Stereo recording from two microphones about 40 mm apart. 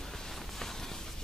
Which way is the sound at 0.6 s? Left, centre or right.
Centre.